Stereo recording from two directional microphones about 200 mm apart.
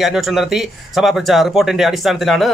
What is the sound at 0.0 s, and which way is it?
Speech, centre (ahead or behind).